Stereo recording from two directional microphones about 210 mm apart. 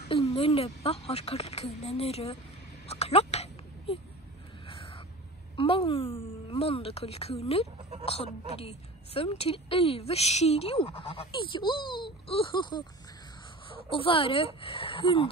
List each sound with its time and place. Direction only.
0.1 s a woman's voice: 25° left (ahead or behind)
2.9 s a sound: 30° left (ahead or behind)
5.6 s a woman's voice: 25° left (ahead or behind)